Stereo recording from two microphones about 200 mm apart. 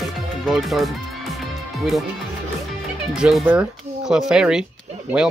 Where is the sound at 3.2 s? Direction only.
5° right (ahead or behind).